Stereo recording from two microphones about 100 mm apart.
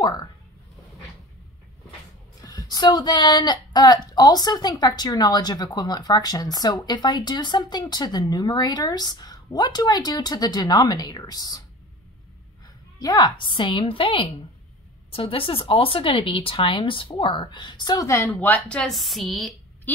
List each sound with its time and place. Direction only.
2.4 s speech: 40° left (ahead or behind)
13.0 s speech: 45° left (ahead or behind)
18.0 s speech: 30° left (ahead or behind)
18.4 s speech: 15° left (ahead or behind)
18.9 s speech: centre (ahead or behind)